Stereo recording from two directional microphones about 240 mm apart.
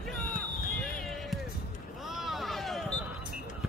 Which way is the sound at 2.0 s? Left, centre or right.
Centre.